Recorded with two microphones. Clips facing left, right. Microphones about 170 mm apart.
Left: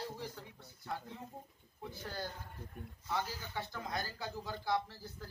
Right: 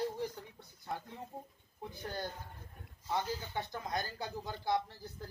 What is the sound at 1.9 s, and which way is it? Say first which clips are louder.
Speech: right 2 dB; 20° right (ahead or behind).